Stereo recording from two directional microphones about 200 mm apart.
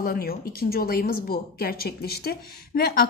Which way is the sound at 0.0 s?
50° left (ahead or behind).